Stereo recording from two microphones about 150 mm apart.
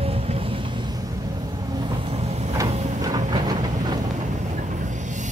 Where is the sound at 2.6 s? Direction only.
25° right (ahead or behind).